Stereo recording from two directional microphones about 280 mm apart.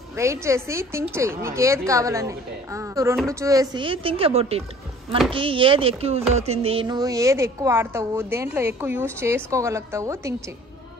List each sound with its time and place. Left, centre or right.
0.2 s a woman's voice: centre